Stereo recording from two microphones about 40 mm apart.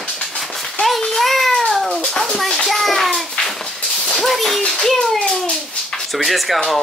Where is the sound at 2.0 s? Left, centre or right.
Centre.